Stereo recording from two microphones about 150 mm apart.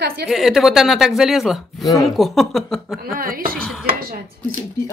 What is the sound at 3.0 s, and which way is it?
Speech, 75° right (ahead or behind).